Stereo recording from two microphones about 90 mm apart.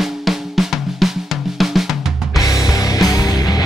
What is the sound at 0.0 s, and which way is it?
Drum, centre (ahead or behind).